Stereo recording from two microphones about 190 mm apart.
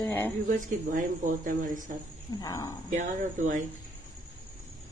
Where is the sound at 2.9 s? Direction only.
40° right (ahead or behind).